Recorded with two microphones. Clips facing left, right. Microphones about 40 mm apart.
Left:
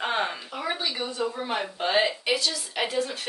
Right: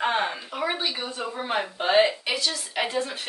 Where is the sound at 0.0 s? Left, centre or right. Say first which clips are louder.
Right 2 dB; centre.